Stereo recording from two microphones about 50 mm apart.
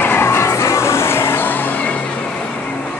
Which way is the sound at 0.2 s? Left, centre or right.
Left.